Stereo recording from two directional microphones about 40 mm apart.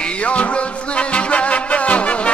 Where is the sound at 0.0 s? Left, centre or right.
Left.